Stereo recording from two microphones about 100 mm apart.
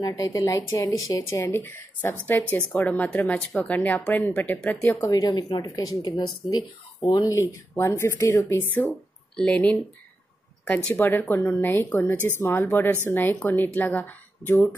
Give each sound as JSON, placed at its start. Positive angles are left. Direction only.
{"t": 0.0, "sound": "speech", "side_deg": 35}
{"t": 5.0, "sound": "speech", "side_deg": 35}
{"t": 6.0, "sound": "speech", "side_deg": 50}
{"t": 7.0, "sound": "speech", "side_deg": 40}
{"t": 7.7, "sound": "speech", "side_deg": 25}
{"t": 9.4, "sound": "speech", "side_deg": 15}